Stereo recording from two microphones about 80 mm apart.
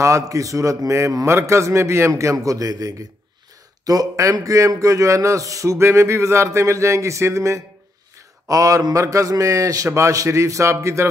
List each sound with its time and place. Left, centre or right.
0.0 s a man's voice: right